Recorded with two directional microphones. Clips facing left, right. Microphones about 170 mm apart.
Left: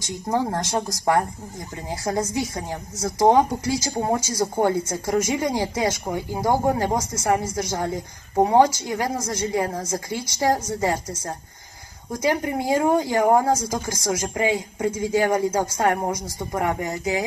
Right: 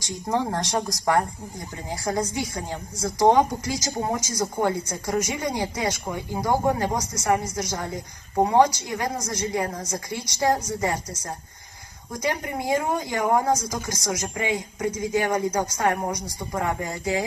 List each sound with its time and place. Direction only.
0.0 s a woman's voice: 25° left (ahead or behind)